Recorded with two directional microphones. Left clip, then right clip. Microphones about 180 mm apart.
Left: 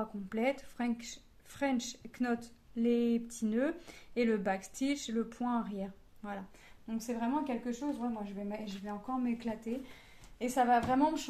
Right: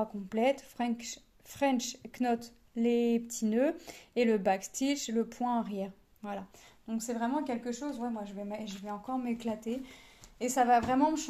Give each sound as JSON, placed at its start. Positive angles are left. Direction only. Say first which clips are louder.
{"t": 0.0, "sound": "a woman's voice", "louder": "right 4 dB", "side_deg": -25}
{"t": 9.2, "sound": "speech", "louder": "right 1 dB", "side_deg": -50}
{"t": 10.4, "sound": "a woman's voice", "louder": "right 3 dB", "side_deg": -25}